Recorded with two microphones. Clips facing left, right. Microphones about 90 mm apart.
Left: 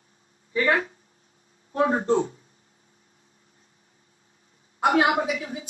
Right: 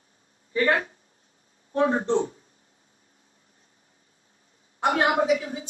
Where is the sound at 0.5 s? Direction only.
40° right (ahead or behind).